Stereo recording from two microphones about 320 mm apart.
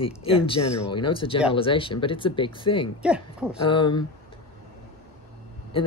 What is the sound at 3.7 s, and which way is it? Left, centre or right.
Speech, centre.